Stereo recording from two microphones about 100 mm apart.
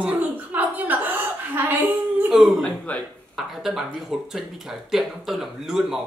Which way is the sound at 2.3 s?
Centre (ahead or behind).